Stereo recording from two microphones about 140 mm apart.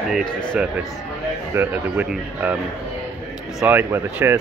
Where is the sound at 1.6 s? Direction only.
10° right (ahead or behind).